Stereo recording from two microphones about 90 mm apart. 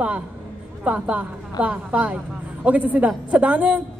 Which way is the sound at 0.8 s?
15° right (ahead or behind).